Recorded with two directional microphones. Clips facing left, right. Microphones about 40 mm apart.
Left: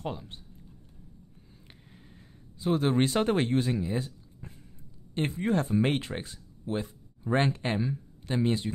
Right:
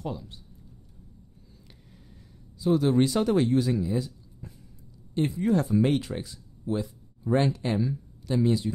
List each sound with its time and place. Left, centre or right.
0.0 s speech: left
2.6 s speech: left
3.8 s a sound: left
5.1 s speech: left